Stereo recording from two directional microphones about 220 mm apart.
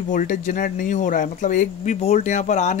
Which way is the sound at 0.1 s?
35° left (ahead or behind).